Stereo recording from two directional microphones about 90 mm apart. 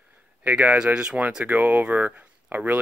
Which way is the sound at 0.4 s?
20° right (ahead or behind).